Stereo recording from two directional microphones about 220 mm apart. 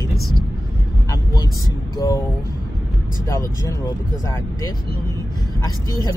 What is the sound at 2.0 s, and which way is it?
Speech, 10° left (ahead or behind).